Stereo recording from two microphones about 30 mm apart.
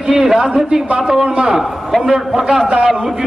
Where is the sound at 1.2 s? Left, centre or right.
Right.